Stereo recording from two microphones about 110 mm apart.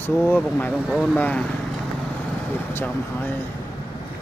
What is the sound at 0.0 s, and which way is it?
Speech, 15° left (ahead or behind).